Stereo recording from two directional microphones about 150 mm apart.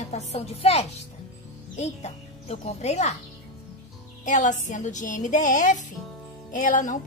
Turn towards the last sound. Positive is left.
turn(degrees=60)  # may be behind; listen again after turning